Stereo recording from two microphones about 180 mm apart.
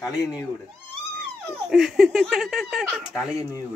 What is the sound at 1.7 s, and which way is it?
Speech, 5° right (ahead or behind).